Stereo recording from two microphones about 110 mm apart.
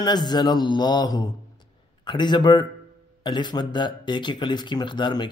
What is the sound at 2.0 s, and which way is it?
Speech, 45° left (ahead or behind).